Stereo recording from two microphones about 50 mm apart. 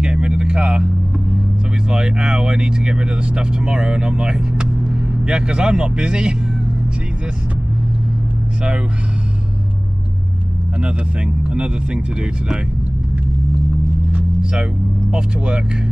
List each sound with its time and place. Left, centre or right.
0.0 s vehicle: right
1.9 s speech: centre
10.8 s speech: right
14.4 s speech: centre